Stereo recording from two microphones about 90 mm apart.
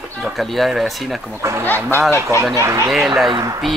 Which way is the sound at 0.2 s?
Centre (ahead or behind).